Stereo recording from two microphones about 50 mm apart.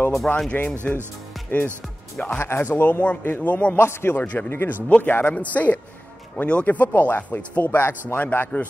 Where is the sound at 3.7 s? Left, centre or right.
Left.